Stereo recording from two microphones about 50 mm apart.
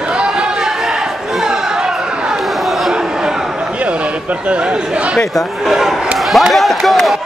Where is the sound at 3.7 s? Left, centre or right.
Right.